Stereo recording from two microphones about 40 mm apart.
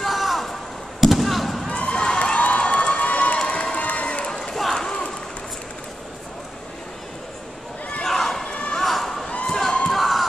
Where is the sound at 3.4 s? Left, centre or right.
Left.